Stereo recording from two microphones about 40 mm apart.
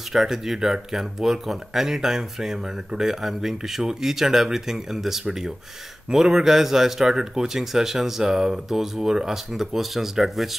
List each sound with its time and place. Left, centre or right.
0.1 s speech: centre